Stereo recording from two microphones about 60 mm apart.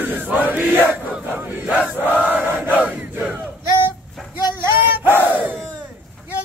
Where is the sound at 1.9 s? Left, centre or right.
Right.